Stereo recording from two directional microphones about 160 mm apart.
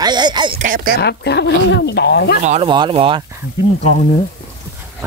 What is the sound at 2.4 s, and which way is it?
Speech, 45° right (ahead or behind).